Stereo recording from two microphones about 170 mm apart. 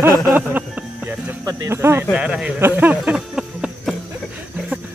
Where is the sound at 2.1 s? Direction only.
5° right (ahead or behind).